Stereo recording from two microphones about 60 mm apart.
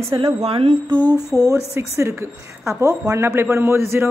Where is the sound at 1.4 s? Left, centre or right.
Right.